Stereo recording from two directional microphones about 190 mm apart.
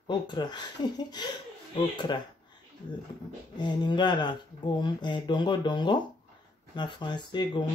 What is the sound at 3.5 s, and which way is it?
Speech, 25° left (ahead or behind).